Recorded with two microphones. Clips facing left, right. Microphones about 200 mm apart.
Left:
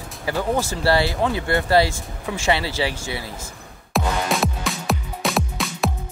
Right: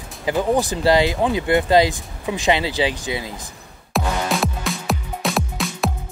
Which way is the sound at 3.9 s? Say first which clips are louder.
Even; centre (ahead or behind).